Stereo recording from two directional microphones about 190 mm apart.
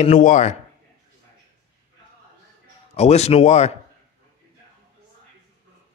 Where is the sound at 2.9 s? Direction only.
35° left (ahead or behind).